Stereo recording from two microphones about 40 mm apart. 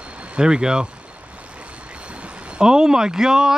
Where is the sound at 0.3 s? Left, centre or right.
Right.